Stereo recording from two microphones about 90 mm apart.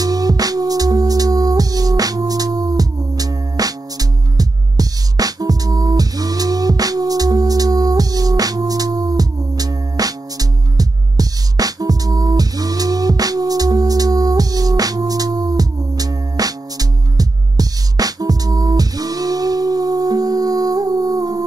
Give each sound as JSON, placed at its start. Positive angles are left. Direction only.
{"t": 0.0, "sound": "music", "side_deg": -45}